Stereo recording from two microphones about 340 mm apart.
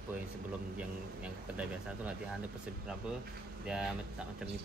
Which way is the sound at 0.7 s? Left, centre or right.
Centre.